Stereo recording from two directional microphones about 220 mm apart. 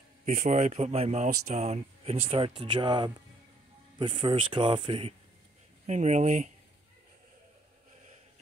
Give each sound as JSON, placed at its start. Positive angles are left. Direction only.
{"t": 0.2, "sound": "speech", "side_deg": -35}